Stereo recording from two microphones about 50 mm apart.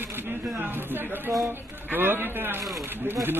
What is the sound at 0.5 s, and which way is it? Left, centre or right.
Speech, right.